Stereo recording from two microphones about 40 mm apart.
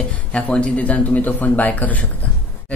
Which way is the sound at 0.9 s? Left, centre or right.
Left.